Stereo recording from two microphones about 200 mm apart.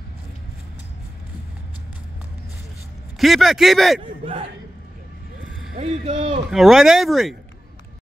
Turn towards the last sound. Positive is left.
turn(degrees=0)  # may be behind; listen again after turning